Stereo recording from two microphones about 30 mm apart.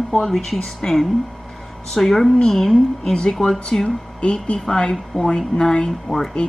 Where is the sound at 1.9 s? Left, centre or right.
Centre.